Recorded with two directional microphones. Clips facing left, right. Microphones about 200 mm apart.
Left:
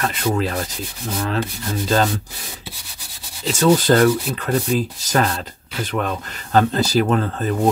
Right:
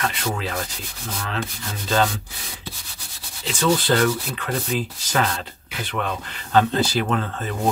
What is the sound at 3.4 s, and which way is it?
Speech, 40° left (ahead or behind).